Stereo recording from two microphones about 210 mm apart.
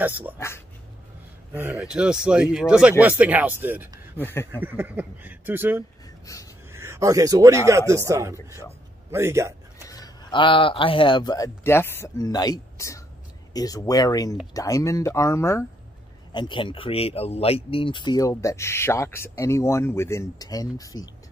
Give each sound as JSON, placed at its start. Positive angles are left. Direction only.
{"t": 0.0, "sound": "speech", "side_deg": -10}
{"t": 1.5, "sound": "speech", "side_deg": -10}
{"t": 4.2, "sound": "speech", "side_deg": 10}
{"t": 4.6, "sound": "speech", "side_deg": -10}
{"t": 6.3, "sound": "speech", "side_deg": 15}
{"t": 6.7, "sound": "a man's voice", "side_deg": -15}
{"t": 9.8, "sound": "speech", "side_deg": 15}